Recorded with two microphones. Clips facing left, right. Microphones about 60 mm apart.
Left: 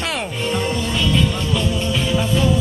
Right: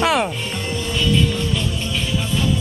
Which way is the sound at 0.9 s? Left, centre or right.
Centre.